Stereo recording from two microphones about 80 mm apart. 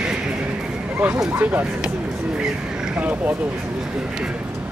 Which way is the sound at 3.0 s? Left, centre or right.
Centre.